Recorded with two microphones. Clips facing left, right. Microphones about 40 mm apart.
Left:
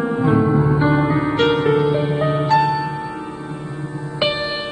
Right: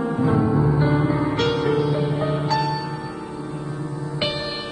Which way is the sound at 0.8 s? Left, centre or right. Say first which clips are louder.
Left 3 dB; left.